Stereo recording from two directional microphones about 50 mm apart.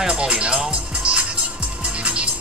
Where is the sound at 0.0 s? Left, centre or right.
Right.